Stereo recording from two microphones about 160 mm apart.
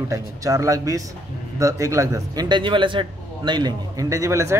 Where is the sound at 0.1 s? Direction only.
20° right (ahead or behind).